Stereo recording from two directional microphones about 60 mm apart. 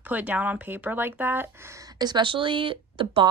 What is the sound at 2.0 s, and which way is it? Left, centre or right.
Speech, right.